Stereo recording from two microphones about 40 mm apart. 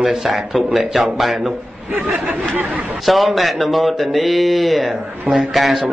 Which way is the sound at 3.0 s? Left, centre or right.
Centre.